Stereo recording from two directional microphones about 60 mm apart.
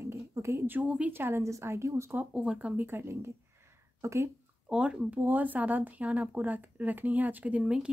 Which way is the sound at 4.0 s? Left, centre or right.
Right.